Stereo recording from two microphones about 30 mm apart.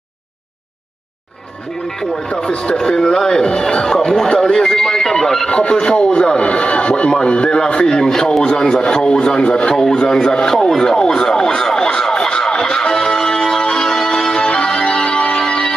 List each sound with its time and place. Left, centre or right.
1.9 s speech: centre
2.5 s speech: left
2.8 s speech: centre
5.5 s speech: left
7.1 s speech: left
7.8 s speech: centre
12.0 s music: centre